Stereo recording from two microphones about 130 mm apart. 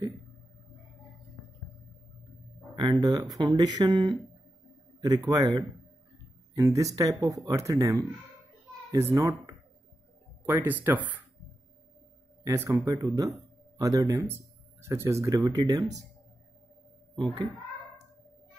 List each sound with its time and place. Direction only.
2.8 s speech: 30° right (ahead or behind)
9.1 s speech: 25° right (ahead or behind)
10.4 s speech: 15° right (ahead or behind)
12.4 s speech: 25° right (ahead or behind)
17.1 s a child's voice: 35° right (ahead or behind)